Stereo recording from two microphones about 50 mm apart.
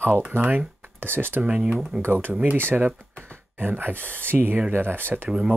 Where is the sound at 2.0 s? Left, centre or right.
Right.